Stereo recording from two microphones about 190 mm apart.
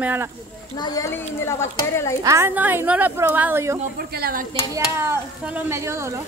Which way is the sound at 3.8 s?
55° right (ahead or behind).